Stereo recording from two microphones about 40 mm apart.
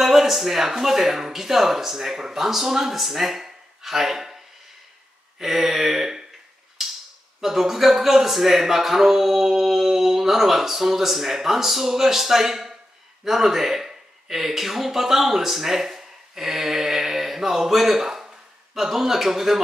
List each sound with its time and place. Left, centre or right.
0.0 s a man's voice: centre
5.4 s a man's voice: centre
6.8 s a sound: centre
7.3 s a man's voice: centre